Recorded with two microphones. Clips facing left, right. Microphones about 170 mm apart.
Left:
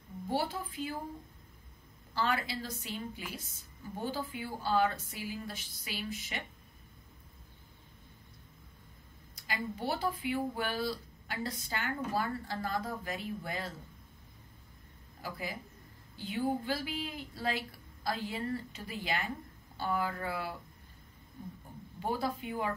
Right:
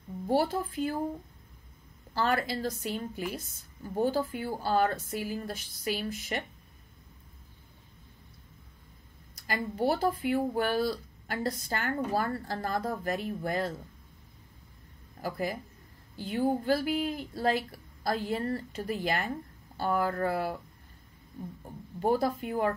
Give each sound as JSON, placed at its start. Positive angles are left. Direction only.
{"t": 0.3, "sound": "a woman's voice", "side_deg": -45}
{"t": 2.1, "sound": "a woman's voice", "side_deg": -45}
{"t": 9.5, "sound": "a woman's voice", "side_deg": -45}
{"t": 15.2, "sound": "a woman's voice", "side_deg": -50}
{"t": 22.0, "sound": "a woman's voice", "side_deg": -45}